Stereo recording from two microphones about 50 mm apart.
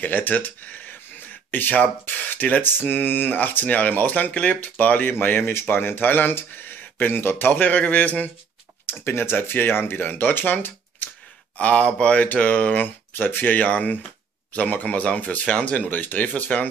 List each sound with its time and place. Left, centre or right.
0.0 s speech: left
5.1 s speech: left
8.8 s speech: left
11.5 s speech: left
13.1 s speech: left